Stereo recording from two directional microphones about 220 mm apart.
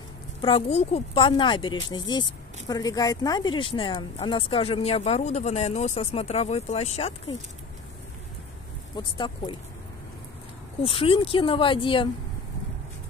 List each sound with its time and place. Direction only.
0.4 s speech: 25° left (ahead or behind)
8.9 s speech: 20° left (ahead or behind)
10.8 s speech: 25° left (ahead or behind)